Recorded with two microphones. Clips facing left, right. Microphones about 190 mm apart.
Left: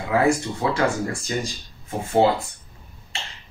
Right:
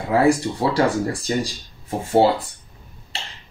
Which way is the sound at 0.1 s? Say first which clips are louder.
Right 3 dB; 35° right (ahead or behind).